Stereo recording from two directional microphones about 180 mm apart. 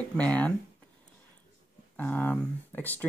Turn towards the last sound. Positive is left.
turn(degrees=10)  # may be behind; listen again after turning